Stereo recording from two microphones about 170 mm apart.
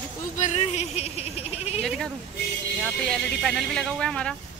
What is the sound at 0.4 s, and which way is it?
Speech, 40° left (ahead or behind).